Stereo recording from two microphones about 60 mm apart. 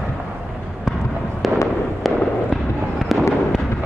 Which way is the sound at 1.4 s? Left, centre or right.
Centre.